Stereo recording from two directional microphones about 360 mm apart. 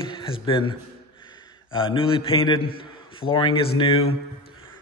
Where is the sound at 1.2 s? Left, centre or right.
Centre.